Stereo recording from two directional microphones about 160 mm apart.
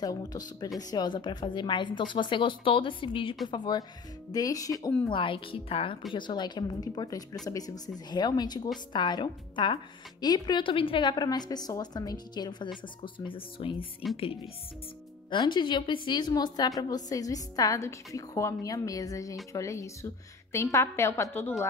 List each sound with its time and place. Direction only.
0.0 s a woman's voice: 25° left (ahead or behind)
5.1 s a woman's voice: 30° left (ahead or behind); by 21.6 s 15° left (ahead or behind)